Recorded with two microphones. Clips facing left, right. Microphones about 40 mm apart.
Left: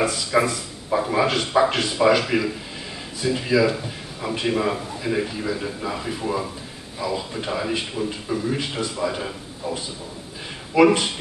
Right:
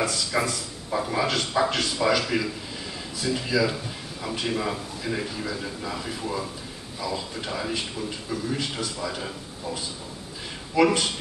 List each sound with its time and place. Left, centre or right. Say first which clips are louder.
0.0 s speech: left 5 dB; centre